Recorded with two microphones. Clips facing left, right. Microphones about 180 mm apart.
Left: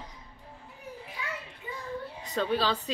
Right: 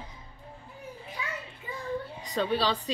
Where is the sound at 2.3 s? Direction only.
5° left (ahead or behind).